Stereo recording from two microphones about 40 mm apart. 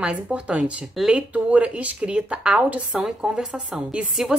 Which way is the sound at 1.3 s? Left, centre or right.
Right.